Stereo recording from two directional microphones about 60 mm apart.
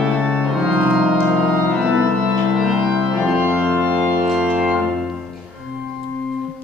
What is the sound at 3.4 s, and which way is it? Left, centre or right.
Organ, right.